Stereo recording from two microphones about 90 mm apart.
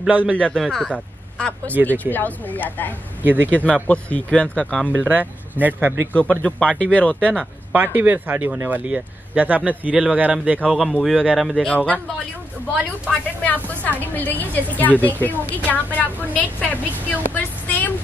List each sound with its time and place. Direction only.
0.1 s speech: 15° right (ahead or behind)
0.6 s a woman's voice: 5° left (ahead or behind); by 2.9 s 20° left (ahead or behind)
3.2 s speech: 20° right (ahead or behind)
3.5 s speech: 15° left (ahead or behind)
5.0 s speech: 20° right (ahead or behind)
6.4 s speech: 10° left (ahead or behind)
7.7 s speech: 20° right (ahead or behind)
10.7 s speech: 5° left (ahead or behind)
11.7 s speech: 15° left (ahead or behind)
13.1 s a woman's voice: 20° left (ahead or behind)